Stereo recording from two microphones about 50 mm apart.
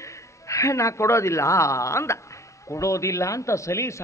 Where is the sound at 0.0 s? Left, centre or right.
Left.